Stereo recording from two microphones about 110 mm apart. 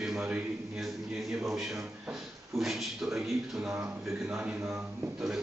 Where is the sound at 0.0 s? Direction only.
5° right (ahead or behind).